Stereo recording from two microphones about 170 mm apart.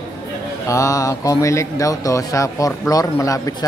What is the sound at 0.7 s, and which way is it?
Speech, 20° left (ahead or behind).